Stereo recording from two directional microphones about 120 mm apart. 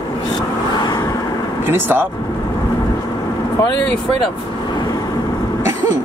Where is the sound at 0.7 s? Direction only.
35° left (ahead or behind).